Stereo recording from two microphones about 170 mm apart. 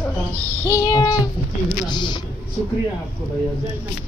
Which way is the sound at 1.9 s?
25° left (ahead or behind).